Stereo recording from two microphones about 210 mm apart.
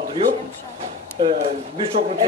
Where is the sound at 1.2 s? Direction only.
25° right (ahead or behind).